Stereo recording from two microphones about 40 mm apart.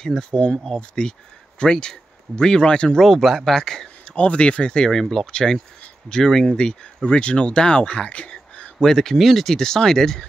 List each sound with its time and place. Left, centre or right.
0.0 s speech: centre
3.0 s speech: centre
4.1 s speech: left
8.3 s a sound: left
8.7 s speech: centre